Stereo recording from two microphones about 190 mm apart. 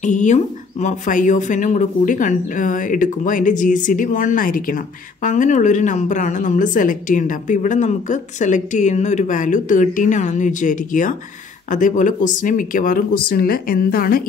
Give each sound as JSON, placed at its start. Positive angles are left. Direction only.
{"t": 0.0, "sound": "speech", "side_deg": 40}